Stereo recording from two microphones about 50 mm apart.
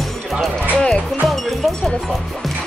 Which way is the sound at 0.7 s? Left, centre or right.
Left.